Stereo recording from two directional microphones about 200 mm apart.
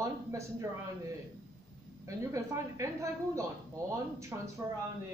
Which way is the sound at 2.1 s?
15° right (ahead or behind).